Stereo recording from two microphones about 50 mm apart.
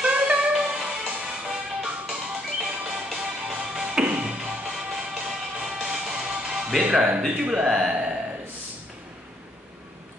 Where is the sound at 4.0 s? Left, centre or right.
Right.